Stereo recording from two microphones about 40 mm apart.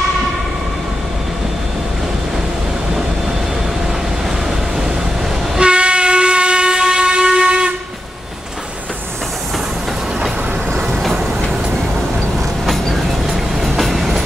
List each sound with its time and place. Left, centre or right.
5.6 s steam whistle: right
10.9 s train: centre
12.6 s train: centre